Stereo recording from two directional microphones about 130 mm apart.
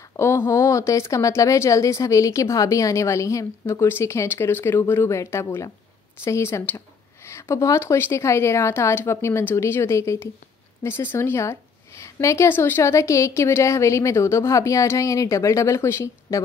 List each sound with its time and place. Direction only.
0.2 s speech: 20° left (ahead or behind)